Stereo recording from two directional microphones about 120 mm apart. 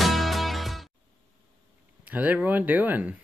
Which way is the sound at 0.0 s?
Centre (ahead or behind).